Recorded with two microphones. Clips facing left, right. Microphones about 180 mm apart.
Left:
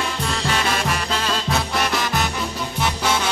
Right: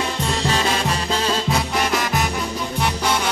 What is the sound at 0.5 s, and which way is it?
Music, 30° right (ahead or behind).